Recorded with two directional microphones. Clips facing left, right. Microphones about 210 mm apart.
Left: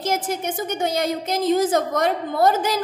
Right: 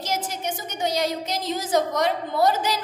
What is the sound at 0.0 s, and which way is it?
A woman's voice, 55° left (ahead or behind).